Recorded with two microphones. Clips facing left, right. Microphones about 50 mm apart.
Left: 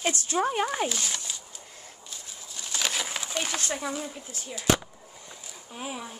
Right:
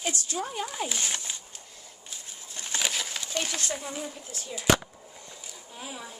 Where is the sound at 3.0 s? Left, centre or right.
Left.